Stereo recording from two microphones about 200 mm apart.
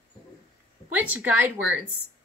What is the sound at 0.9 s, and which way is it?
Speech, 10° right (ahead or behind).